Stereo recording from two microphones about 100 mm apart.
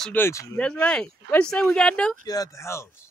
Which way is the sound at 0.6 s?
10° left (ahead or behind).